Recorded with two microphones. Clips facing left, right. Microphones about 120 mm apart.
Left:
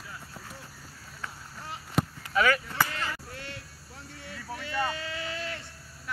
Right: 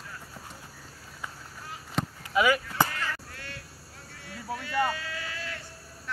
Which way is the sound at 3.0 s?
20° left (ahead or behind).